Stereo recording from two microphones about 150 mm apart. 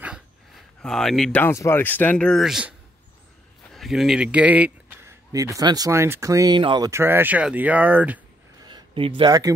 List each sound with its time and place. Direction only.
0.8 s speech: 5° left (ahead or behind)
1.4 s speech: 15° left (ahead or behind); by 2.7 s 5° right (ahead or behind)
3.7 s speech: centre (ahead or behind); by 6.9 s 30° right (ahead or behind)
6.9 s speech: 15° right (ahead or behind)
8.6 s speech: 35° right (ahead or behind)